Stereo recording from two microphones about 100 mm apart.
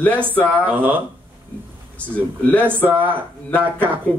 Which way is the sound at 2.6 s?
20° right (ahead or behind).